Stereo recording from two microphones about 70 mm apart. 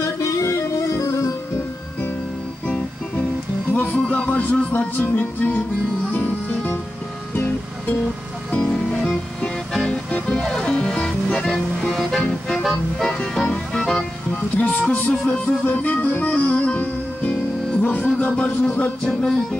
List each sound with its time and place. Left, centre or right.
0.0 s music: left
3.7 s music: left
8.6 s music: centre
14.6 s music: left
19.0 s music: centre